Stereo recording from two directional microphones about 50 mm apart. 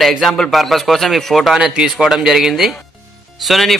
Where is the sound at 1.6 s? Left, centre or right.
Centre.